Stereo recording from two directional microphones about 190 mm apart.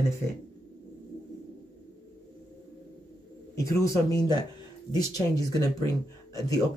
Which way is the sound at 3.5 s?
15° left (ahead or behind).